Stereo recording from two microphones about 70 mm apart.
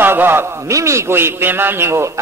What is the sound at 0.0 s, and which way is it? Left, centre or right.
A man's voice, right.